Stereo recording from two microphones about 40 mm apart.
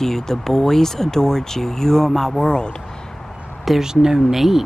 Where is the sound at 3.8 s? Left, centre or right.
Centre.